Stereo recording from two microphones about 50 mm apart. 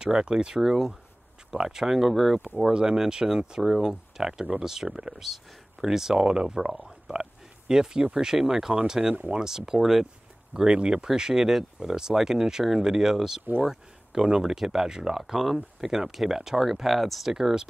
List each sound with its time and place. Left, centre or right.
0.0 s speech: centre
0.6 s speech: centre
2.7 s speech: centre
3.9 s speech: centre
10.5 s speech: centre